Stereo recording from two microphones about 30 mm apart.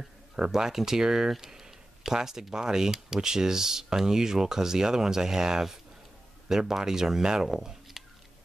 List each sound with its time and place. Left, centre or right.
0.4 s speech: centre